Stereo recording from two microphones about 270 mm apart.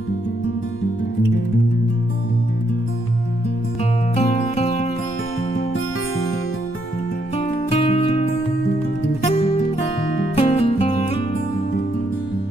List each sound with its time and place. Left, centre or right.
4.1 s music: left
7.3 s music: left